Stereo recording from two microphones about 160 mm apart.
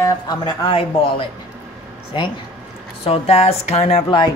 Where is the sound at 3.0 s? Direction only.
40° left (ahead or behind).